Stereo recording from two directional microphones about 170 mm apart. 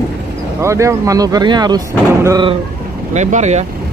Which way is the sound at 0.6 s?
15° right (ahead or behind).